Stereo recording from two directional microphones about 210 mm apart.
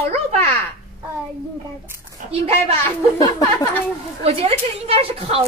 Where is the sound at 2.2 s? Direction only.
30° right (ahead or behind).